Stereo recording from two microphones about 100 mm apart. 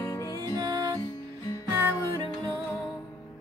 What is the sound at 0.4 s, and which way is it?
Music, 40° right (ahead or behind).